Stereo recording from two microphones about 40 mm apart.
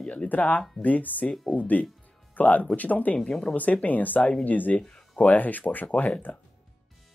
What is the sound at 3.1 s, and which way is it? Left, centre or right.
Speech, centre.